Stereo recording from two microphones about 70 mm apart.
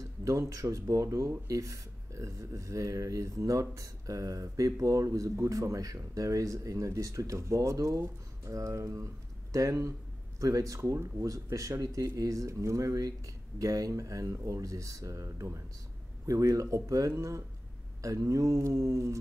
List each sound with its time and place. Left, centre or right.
0.2 s speech: right
16.3 s speech: right